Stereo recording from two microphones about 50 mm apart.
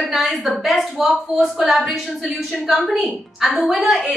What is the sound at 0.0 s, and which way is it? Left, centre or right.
A woman's voice, centre.